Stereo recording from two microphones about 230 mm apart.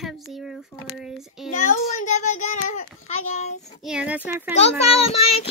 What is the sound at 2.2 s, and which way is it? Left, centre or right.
Child singing, left.